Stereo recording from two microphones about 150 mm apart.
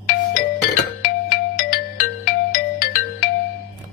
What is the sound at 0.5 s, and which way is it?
Music, 70° left (ahead or behind).